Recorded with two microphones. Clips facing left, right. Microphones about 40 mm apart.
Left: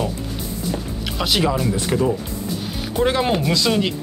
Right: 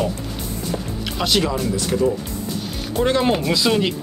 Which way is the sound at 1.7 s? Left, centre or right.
Centre.